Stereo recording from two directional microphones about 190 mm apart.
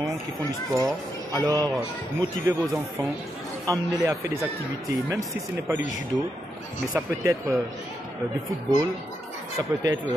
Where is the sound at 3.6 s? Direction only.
20° right (ahead or behind).